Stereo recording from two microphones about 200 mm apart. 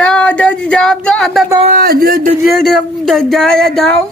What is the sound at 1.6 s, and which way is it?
Speech, 45° right (ahead or behind).